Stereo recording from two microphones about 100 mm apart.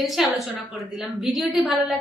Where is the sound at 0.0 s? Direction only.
Centre (ahead or behind).